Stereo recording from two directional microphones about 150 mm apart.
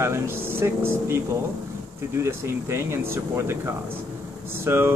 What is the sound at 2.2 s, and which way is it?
Speech, 15° right (ahead or behind).